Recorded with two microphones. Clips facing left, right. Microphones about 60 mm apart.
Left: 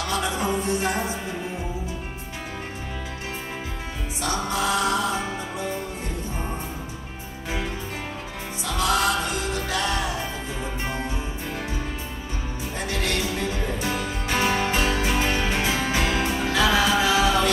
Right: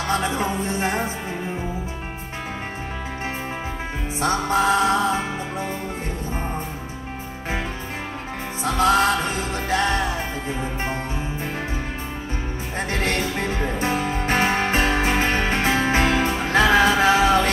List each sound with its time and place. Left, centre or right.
0.0 s music: right
4.2 s music: right
8.6 s music: right
12.7 s music: right